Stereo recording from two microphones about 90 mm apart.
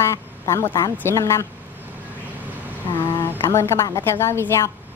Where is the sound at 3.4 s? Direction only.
35° left (ahead or behind).